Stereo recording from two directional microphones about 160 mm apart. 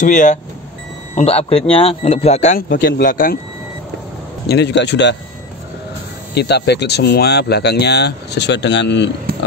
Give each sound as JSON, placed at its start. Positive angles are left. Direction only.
{"t": 0.0, "sound": "speech", "side_deg": 50}
{"t": 1.1, "sound": "a man's voice", "side_deg": 40}
{"t": 2.8, "sound": "speech", "side_deg": 70}
{"t": 4.5, "sound": "speech", "side_deg": 90}
{"t": 6.3, "sound": "speech", "side_deg": 90}